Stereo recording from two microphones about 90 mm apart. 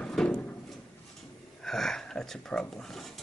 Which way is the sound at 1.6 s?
5° left (ahead or behind).